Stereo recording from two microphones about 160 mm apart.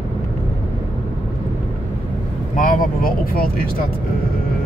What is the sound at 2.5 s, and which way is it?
Speech, 60° left (ahead or behind).